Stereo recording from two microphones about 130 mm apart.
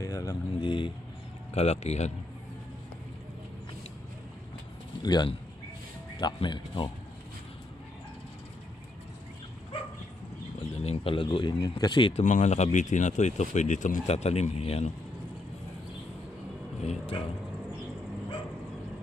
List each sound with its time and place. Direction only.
0.0 s speech: 25° left (ahead or behind)
1.5 s speech: 55° left (ahead or behind)
5.0 s speech: 30° left (ahead or behind)
10.8 s speech: 50° left (ahead or behind)
12.2 s speech: 65° left (ahead or behind)
16.8 s vehicle: 55° left (ahead or behind)